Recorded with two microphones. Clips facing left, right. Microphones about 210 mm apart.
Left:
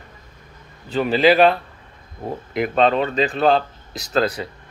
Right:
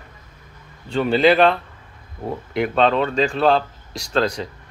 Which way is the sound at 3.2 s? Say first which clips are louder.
Even; 35° left (ahead or behind).